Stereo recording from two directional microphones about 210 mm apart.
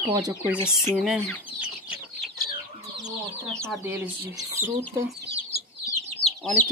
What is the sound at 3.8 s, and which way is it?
Speech, 10° right (ahead or behind).